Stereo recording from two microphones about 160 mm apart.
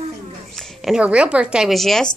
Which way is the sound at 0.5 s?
5° right (ahead or behind).